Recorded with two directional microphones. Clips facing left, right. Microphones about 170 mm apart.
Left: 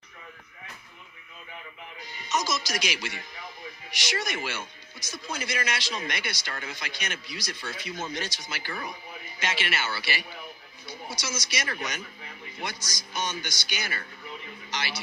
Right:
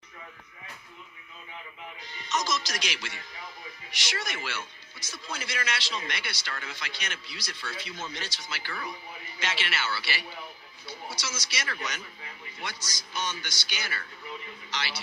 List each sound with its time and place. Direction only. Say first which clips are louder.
2.0 s a man's voice: left 1 dB; 10° left (ahead or behind)
13.2 s a man's voice: left 2 dB; 15° left (ahead or behind)